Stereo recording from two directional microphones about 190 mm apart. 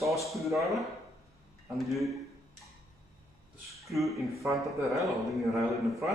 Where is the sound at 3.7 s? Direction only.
Centre (ahead or behind).